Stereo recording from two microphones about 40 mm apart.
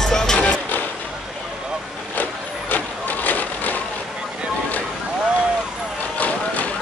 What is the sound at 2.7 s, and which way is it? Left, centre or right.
Vehicle, left.